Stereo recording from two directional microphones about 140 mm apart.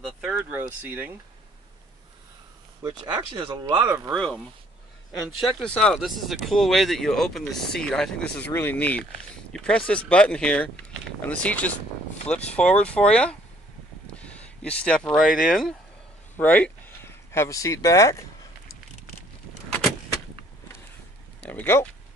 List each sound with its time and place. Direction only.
0.0 s a sound: 10° right (ahead or behind)
2.8 s speech: 30° right (ahead or behind)
4.1 s speech: 5° left (ahead or behind)
5.6 s speech: 5° left (ahead or behind)
14.1 s a sound: 10° left (ahead or behind)
15.4 s speech: 5° left (ahead or behind); by 18.2 s 20° left (ahead or behind)
21.5 s speech: 15° left (ahead or behind)